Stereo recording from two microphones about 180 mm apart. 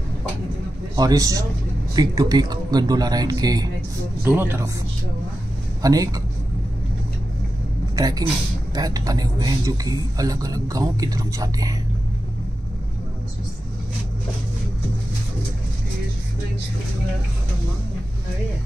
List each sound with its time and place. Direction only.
0.9 s speech: 20° right (ahead or behind)
5.8 s speech: 20° right (ahead or behind)
7.9 s a sound: 20° right (ahead or behind)
8.7 s speech: 20° right (ahead or behind)